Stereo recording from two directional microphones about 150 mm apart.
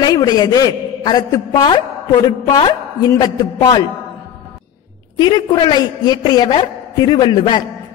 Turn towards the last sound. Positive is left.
turn(degrees=30)  # may be behind; listen again after turning